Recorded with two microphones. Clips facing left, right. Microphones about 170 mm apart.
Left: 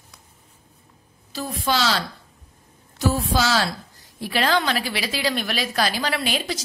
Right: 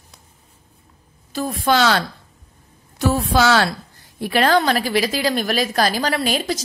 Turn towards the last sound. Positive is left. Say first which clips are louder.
# right 4 dB
turn(degrees=-45)  # may be behind; listen again after turning